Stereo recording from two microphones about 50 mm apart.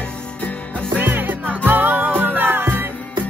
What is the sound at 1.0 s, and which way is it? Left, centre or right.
Music, right.